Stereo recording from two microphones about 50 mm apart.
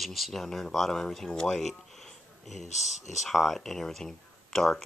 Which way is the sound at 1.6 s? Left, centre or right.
Centre.